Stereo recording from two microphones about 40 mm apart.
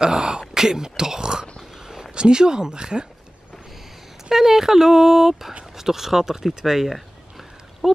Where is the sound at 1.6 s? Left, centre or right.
Centre.